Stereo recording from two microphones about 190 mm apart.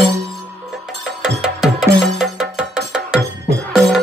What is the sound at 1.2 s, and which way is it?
Music, 5° right (ahead or behind).